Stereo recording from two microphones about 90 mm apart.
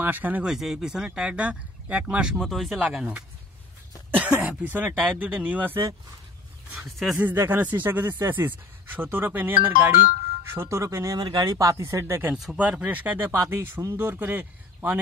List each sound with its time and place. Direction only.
0.0 s speech: 20° right (ahead or behind)
0.5 s speech: 5° right (ahead or behind)
2.3 s speech: centre (ahead or behind)
2.8 s speech: 10° right (ahead or behind)
7.3 s speech: 25° right (ahead or behind)
11.1 s speech: 50° right (ahead or behind); by 12.3 s 30° right (ahead or behind)
12.5 s speech: 15° right (ahead or behind)